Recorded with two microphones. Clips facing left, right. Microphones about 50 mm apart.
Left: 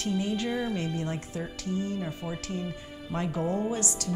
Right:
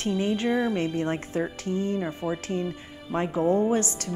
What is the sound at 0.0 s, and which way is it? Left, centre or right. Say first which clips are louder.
A woman's voice: right 4 dB; right.